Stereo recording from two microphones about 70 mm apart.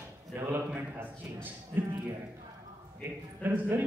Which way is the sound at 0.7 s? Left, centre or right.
Right.